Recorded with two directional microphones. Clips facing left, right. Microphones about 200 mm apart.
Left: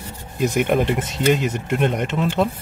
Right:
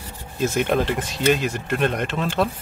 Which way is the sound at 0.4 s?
15° left (ahead or behind).